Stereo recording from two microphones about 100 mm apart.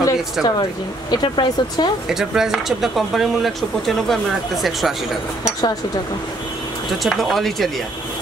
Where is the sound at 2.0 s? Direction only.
5° right (ahead or behind).